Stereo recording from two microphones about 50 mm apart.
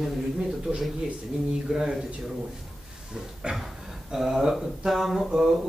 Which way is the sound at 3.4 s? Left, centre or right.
Right.